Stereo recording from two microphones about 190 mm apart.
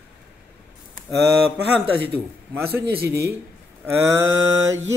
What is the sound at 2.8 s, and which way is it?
Speech, 60° right (ahead or behind).